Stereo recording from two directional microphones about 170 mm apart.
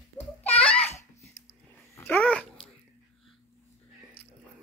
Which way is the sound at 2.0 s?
10° left (ahead or behind).